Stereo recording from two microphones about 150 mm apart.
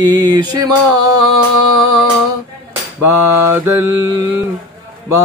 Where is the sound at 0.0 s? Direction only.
30° right (ahead or behind).